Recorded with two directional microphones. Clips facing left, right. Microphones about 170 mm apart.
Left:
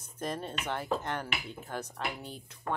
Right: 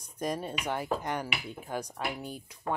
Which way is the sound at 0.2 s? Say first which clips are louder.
Right 3 dB; 10° right (ahead or behind).